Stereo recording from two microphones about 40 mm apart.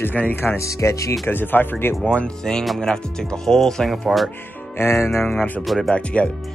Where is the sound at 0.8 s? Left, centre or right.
Left.